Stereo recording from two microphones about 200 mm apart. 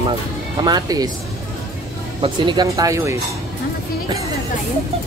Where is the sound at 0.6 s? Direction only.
20° right (ahead or behind).